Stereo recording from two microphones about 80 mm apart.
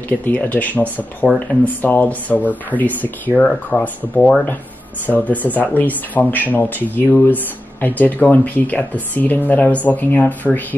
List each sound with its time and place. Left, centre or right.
0.2 s speech: left